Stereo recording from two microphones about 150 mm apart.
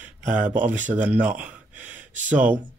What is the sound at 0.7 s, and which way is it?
Speech, 10° right (ahead or behind).